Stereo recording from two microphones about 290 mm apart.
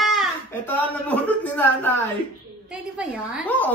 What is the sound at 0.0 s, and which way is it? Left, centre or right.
A woman's voice, centre.